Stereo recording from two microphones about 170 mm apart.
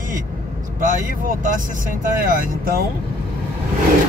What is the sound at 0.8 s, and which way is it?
Speech, 50° right (ahead or behind).